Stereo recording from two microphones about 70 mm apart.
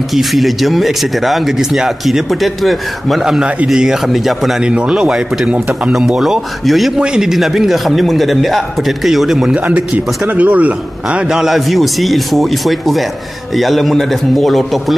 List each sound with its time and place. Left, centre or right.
0.1 s speech: centre
4.7 s speech: centre
9.5 s a man's voice: right
11.3 s speech: centre